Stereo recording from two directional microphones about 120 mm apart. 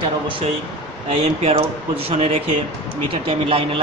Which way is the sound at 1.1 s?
55° right (ahead or behind).